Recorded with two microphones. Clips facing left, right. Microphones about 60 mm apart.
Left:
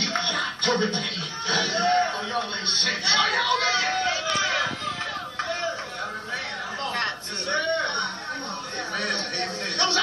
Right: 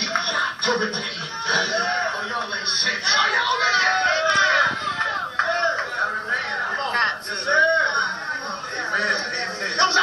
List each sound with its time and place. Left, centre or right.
0.1 s music: right
1.5 s speech: right
3.8 s a sound: right